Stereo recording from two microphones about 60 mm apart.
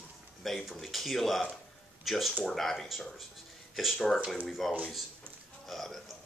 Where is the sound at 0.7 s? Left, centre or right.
Centre.